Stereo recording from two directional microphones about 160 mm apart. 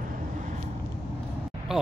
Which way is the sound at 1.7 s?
5° right (ahead or behind).